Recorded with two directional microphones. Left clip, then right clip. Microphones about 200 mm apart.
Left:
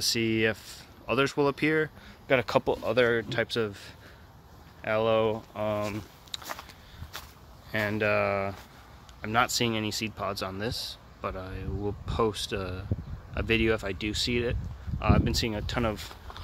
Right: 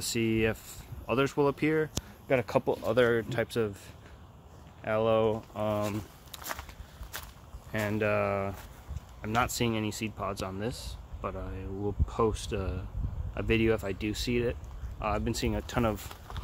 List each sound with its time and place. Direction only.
0.0 s speech: centre (ahead or behind)
7.7 s speech: centre (ahead or behind)